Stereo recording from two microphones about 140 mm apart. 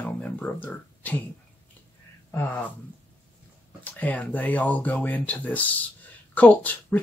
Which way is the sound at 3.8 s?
10° left (ahead or behind).